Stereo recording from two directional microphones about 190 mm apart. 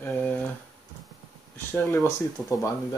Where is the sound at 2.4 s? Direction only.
15° left (ahead or behind).